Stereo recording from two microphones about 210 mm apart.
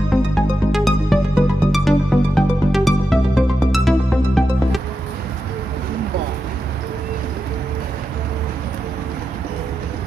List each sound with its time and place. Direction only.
0.3 s music: centre (ahead or behind)